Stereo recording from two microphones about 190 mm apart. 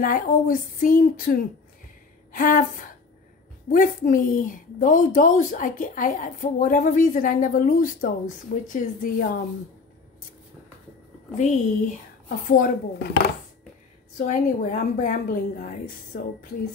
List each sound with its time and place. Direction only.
0.0 s a woman's voice: 45° left (ahead or behind)
11.3 s a woman's voice: 40° left (ahead or behind); by 13.2 s 55° left (ahead or behind)
14.1 s a woman's voice: 40° left (ahead or behind)